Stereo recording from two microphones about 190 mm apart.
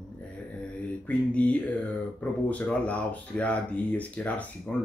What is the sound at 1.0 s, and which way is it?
Speech, 5° left (ahead or behind).